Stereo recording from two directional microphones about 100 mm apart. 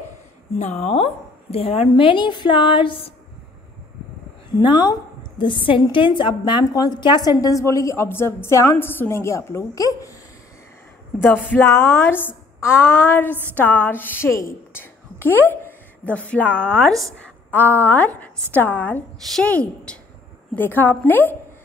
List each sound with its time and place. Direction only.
0.7 s a woman's voice: 90° left; by 3.1 s 60° left (ahead or behind)
4.6 s a woman's voice: 45° left (ahead or behind)
11.2 s a woman's voice: 15° left (ahead or behind)
17.5 s a woman's voice: 15° left (ahead or behind)